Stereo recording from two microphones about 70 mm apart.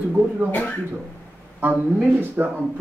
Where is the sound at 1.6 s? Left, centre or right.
Right.